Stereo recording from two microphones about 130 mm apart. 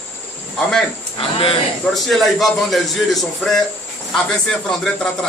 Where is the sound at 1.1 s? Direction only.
45° left (ahead or behind).